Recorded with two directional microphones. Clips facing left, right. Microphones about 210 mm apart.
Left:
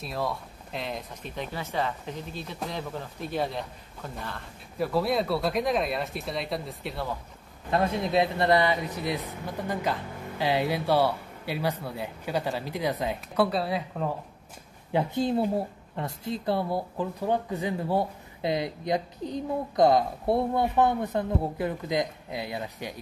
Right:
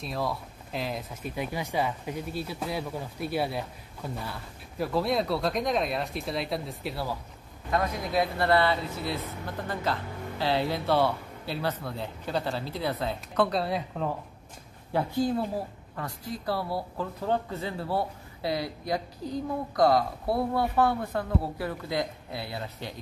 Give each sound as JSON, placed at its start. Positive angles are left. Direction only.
{"t": 0.0, "sound": "speech", "side_deg": 0}
{"t": 7.7, "sound": "speech", "side_deg": 25}
{"t": 14.9, "sound": "a woman's voice", "side_deg": 20}